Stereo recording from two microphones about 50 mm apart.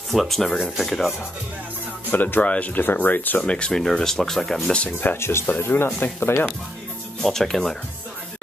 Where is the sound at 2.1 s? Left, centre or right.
Left.